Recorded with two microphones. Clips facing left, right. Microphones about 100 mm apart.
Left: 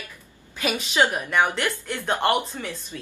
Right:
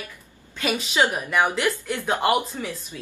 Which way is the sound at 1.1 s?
Centre (ahead or behind).